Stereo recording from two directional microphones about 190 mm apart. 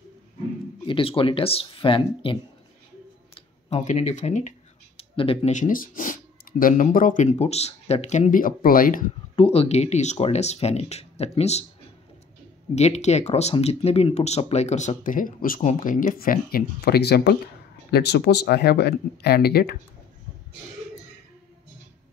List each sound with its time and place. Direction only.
0.8 s speech: 25° left (ahead or behind)
3.3 s speech: 35° left (ahead or behind)
9.3 s speech: 30° left (ahead or behind)
12.7 s speech: 35° left (ahead or behind); by 19.8 s 55° left (ahead or behind)